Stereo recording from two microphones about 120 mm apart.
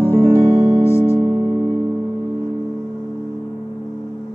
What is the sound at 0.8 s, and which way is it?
Music, 20° left (ahead or behind).